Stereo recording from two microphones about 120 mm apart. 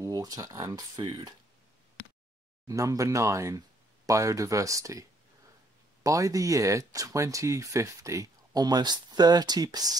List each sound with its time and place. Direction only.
0.0 s speech: 30° right (ahead or behind)
2.6 s speech: 30° right (ahead or behind)
6.0 s speech: 30° right (ahead or behind)